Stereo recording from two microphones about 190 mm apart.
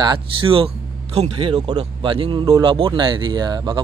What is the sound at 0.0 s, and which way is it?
Speech, 25° right (ahead or behind).